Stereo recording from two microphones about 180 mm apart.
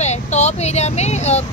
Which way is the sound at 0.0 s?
40° left (ahead or behind).